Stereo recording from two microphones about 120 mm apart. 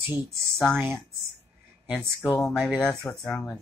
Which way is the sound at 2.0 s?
Centre (ahead or behind).